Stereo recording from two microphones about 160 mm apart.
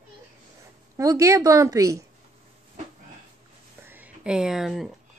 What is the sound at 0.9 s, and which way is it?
A woman's voice, 20° right (ahead or behind).